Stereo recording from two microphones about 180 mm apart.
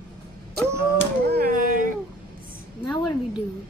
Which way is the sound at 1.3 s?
55° right (ahead or behind).